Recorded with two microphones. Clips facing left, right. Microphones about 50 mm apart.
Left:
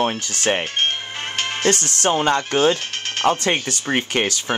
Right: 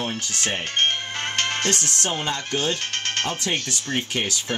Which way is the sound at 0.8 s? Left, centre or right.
Centre.